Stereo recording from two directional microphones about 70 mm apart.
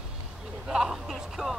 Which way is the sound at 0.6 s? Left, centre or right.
Centre.